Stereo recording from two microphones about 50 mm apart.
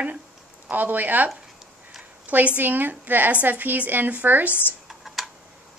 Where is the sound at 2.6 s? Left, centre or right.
Right.